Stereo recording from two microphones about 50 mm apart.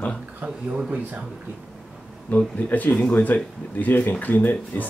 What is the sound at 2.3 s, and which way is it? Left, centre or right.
Speech, left.